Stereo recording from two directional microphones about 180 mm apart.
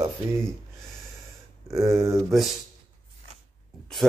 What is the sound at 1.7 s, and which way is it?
Speech, 15° right (ahead or behind).